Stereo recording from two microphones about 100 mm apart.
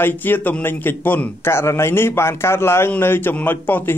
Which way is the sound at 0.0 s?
20° left (ahead or behind).